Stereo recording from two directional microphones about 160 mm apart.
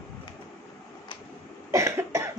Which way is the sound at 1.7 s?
20° right (ahead or behind).